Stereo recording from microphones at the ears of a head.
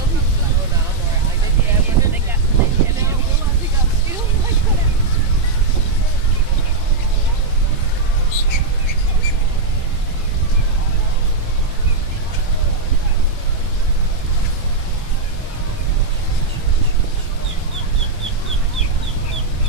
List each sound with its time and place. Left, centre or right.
1.6 s wind noise: right